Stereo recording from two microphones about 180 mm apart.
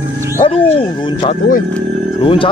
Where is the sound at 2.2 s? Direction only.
30° left (ahead or behind).